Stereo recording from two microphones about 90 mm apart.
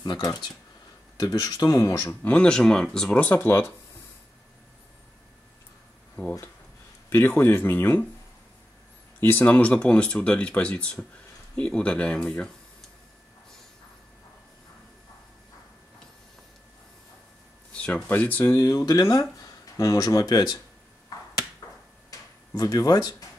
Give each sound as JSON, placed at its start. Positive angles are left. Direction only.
{"t": 0.0, "sound": "speech", "side_deg": 50}
{"t": 2.2, "sound": "speech", "side_deg": 15}
{"t": 6.2, "sound": "speech", "side_deg": 15}
{"t": 7.1, "sound": "speech", "side_deg": 25}
{"t": 9.2, "sound": "speech", "side_deg": 20}
{"t": 17.7, "sound": "speech", "side_deg": 15}
{"t": 18.6, "sound": "speech", "side_deg": 40}
{"t": 21.1, "sound": "a sound", "side_deg": 40}
{"t": 21.6, "sound": "a sound", "side_deg": 50}
{"t": 22.5, "sound": "speech", "side_deg": 40}